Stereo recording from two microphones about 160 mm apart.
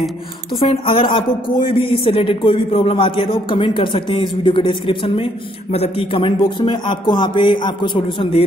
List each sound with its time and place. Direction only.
0.7 s a woman's voice: 35° left (ahead or behind)